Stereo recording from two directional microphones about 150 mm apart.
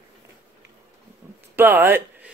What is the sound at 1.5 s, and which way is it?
Speech, 15° right (ahead or behind).